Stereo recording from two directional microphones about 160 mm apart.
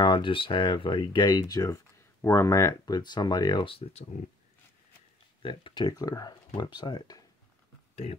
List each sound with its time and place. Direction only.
0.0 s speech: 30° left (ahead or behind)
5.4 s speech: 30° left (ahead or behind)
7.9 s speech: 40° left (ahead or behind)